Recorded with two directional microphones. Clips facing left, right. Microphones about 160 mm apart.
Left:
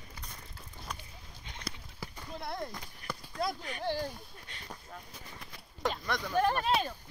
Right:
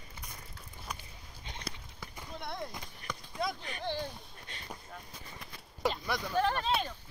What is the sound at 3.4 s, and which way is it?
Speech, 5° left (ahead or behind).